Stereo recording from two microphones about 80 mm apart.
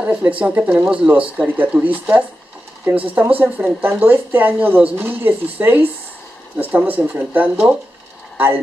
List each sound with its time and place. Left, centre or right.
0.0 s speech: right